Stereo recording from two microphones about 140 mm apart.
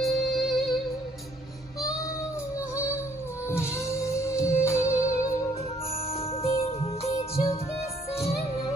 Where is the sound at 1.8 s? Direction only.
25° left (ahead or behind).